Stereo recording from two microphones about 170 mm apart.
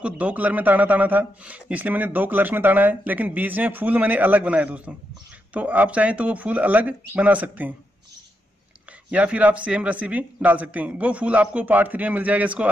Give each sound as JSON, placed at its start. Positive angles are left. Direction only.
{"t": 0.0, "sound": "speech", "side_deg": -10}
{"t": 9.1, "sound": "speech", "side_deg": -10}